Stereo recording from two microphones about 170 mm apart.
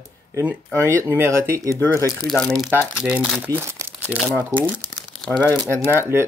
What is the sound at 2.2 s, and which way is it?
Speech, centre (ahead or behind).